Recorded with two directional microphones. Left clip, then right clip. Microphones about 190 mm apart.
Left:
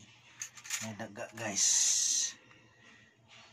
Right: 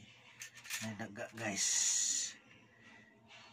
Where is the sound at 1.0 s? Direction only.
10° right (ahead or behind).